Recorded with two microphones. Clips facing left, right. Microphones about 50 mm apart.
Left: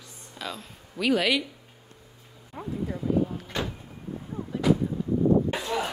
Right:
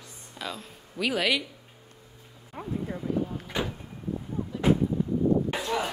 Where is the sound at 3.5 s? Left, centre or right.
Centre.